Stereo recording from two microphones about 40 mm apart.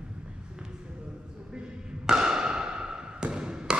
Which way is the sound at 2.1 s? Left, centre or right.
Centre.